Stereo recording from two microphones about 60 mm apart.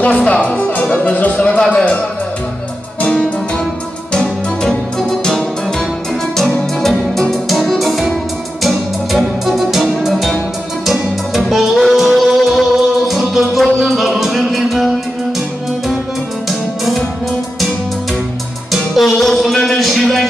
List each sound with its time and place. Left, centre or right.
0.0 s speech: left
3.0 s music: centre
6.8 s music: centre
16.4 s music: centre
18.7 s music: centre